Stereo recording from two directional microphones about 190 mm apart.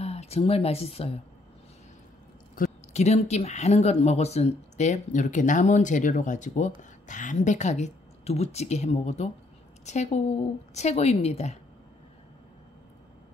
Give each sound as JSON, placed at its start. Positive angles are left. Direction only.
{"t": 0.0, "sound": "speech", "side_deg": 35}
{"t": 2.5, "sound": "a woman's voice", "side_deg": 40}